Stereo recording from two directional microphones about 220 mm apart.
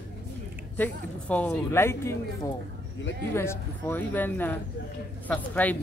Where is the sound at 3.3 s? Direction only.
10° left (ahead or behind).